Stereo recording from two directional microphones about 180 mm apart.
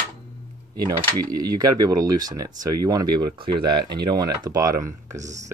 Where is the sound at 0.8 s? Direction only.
20° right (ahead or behind).